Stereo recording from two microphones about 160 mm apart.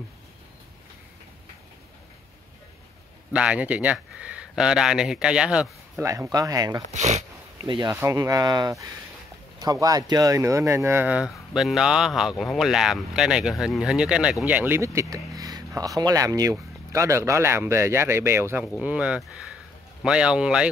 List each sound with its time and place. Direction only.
3.3 s speech: 10° right (ahead or behind)
5.9 s speech: 20° right (ahead or behind)
6.9 s speech: 45° right (ahead or behind)
7.8 s speech: 20° right (ahead or behind)